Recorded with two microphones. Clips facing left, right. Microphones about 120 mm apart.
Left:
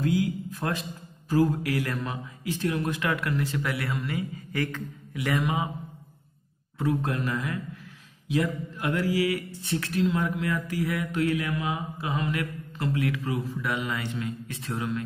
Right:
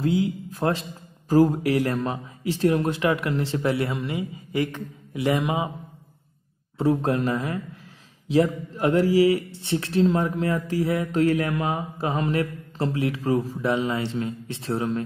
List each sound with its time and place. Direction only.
0.0 s a man's voice: 25° right (ahead or behind)
6.8 s speech: 30° right (ahead or behind)